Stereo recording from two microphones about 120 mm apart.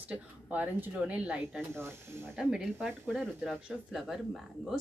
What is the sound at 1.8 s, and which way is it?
Speech, 20° right (ahead or behind).